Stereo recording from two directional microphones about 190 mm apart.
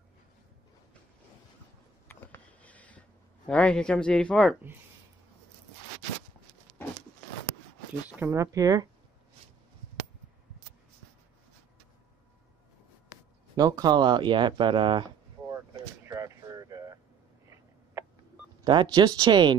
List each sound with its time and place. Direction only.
2.0 s a sound: 10° left (ahead or behind)
3.4 s speech: 5° left (ahead or behind)
8.2 s speech: 15° right (ahead or behind)
13.6 s speech: 20° right (ahead or behind)
16.1 s a sound: 15° right (ahead or behind)
18.6 s speech: 25° right (ahead or behind)